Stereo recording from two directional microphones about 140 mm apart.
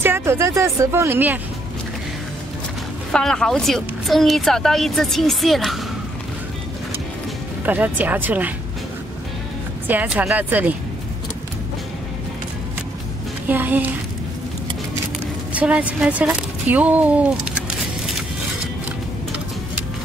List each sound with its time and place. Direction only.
0.0 s speech: 15° right (ahead or behind)
3.1 s a woman's voice: 5° left (ahead or behind)
7.6 s speech: 10° right (ahead or behind)
9.8 s speech: 10° right (ahead or behind)
13.5 s speech: 15° right (ahead or behind)
15.5 s speech: 10° right (ahead or behind)